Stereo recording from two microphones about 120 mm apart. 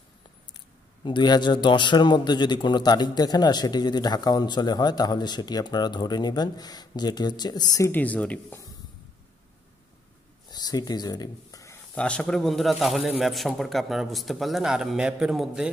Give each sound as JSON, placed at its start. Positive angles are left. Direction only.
{"t": 1.0, "sound": "a man's voice", "side_deg": 40}
{"t": 7.9, "sound": "speech", "side_deg": 10}
{"t": 10.5, "sound": "a sound", "side_deg": 35}
{"t": 11.9, "sound": "speech", "side_deg": 10}